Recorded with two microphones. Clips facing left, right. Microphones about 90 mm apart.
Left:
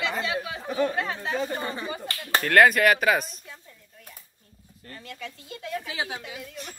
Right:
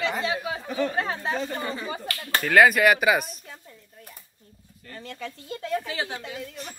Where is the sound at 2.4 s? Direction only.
Centre (ahead or behind).